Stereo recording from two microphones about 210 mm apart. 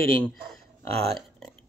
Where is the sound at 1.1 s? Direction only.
Centre (ahead or behind).